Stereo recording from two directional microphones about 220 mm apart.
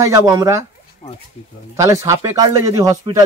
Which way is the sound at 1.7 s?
15° right (ahead or behind).